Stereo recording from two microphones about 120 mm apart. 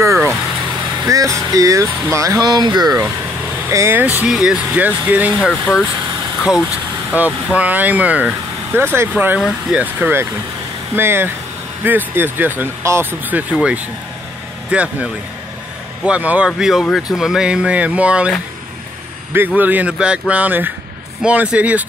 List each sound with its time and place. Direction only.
0.0 s vehicle: 25° right (ahead or behind)
1.0 s speech: 25° right (ahead or behind)
3.6 s speech: 20° right (ahead or behind)
19.3 s speech: 15° right (ahead or behind)